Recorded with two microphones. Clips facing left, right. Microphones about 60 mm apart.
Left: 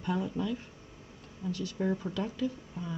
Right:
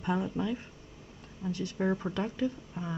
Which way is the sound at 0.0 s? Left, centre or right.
Right.